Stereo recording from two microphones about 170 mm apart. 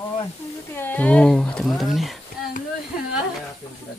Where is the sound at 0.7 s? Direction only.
10° left (ahead or behind).